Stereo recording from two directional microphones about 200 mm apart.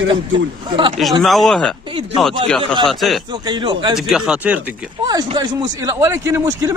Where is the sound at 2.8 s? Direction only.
Centre (ahead or behind).